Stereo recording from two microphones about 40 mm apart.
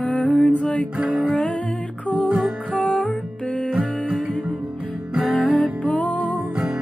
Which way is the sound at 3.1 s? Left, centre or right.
Left.